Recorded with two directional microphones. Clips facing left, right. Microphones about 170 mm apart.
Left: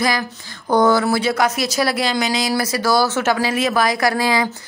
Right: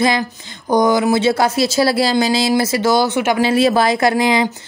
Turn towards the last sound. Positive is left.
turn(degrees=-20)  # may be behind; listen again after turning